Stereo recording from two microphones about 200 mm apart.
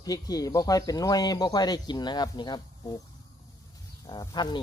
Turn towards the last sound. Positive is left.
turn(degrees=20)  # may be behind; listen again after turning